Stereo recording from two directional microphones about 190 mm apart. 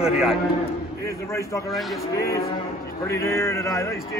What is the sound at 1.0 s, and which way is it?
Speech, 15° left (ahead or behind).